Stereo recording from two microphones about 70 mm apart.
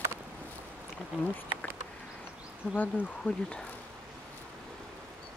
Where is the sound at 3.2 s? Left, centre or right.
Centre.